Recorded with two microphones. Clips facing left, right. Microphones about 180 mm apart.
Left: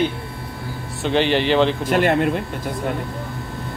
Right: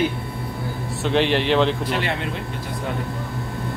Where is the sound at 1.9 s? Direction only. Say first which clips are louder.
Left 8 dB; 50° left (ahead or behind).